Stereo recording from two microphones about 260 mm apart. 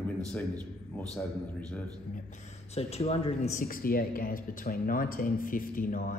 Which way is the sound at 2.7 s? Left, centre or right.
Left.